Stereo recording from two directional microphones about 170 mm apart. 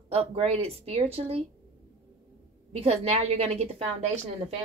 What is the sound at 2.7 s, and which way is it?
Speech, 35° right (ahead or behind).